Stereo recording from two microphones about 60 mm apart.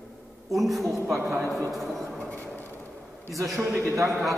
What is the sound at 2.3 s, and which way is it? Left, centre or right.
Vehicle, left.